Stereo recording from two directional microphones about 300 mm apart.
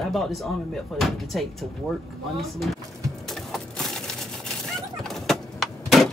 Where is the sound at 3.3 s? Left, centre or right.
Centre.